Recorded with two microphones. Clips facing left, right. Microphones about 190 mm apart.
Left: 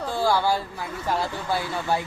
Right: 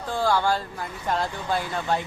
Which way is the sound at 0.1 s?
10° left (ahead or behind).